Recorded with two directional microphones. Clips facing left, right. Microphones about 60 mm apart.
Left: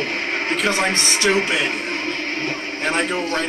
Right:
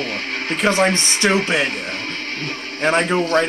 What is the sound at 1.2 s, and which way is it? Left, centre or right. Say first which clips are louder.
Speech: right 1 dB; right.